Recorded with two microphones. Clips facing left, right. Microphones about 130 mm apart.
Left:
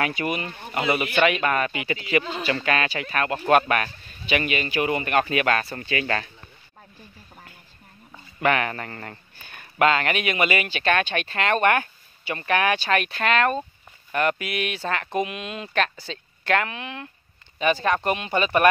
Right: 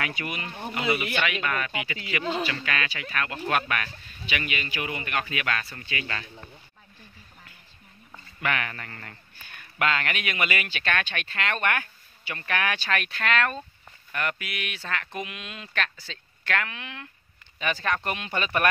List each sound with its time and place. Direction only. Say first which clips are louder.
0.2 s speech: left 6 dB; 35° left (ahead or behind); by 6.2 s 55° left (ahead or behind)
8.4 s speech: left 7 dB; 35° left (ahead or behind); by 18.7 s 15° left (ahead or behind)